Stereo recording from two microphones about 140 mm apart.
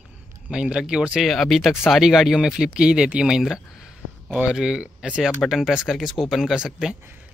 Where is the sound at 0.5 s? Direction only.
5° right (ahead or behind).